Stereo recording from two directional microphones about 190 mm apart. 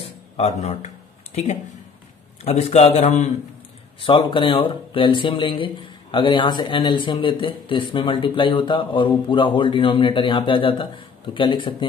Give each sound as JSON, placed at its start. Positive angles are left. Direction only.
{"t": 0.4, "sound": "a man's voice", "side_deg": 35}